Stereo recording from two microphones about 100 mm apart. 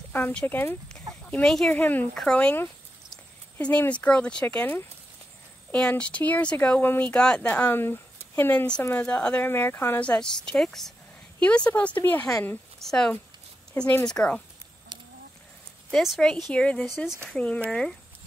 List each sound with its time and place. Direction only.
0.1 s speech: 15° left (ahead or behind)
1.2 s chicken: 15° left (ahead or behind)
1.7 s speech: 15° left (ahead or behind)
3.5 s speech: 20° left (ahead or behind)
9.5 s speech: 25° left (ahead or behind)
12.8 s speech: 5° left (ahead or behind)
14.9 s chicken: 50° right (ahead or behind)
15.9 s speech: centre (ahead or behind)
16.8 s speech: 5° right (ahead or behind)
17.3 s speech: 15° left (ahead or behind)